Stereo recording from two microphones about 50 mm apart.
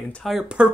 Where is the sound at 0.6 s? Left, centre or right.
Right.